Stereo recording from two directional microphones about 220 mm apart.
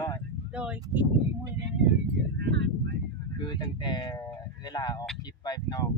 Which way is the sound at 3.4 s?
20° left (ahead or behind).